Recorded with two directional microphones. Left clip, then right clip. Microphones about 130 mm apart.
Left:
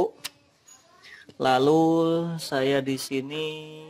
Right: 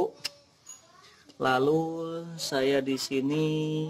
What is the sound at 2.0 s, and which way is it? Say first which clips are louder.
Speech: left 10 dB; 20° left (ahead or behind).